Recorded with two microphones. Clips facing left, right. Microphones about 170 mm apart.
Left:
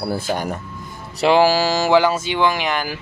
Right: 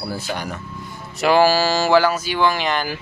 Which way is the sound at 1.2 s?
20° left (ahead or behind).